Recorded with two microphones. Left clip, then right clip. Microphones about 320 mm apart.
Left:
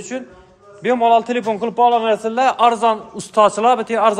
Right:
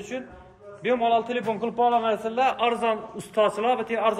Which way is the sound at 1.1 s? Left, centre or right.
Left.